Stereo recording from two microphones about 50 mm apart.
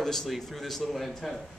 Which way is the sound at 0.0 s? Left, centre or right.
Centre.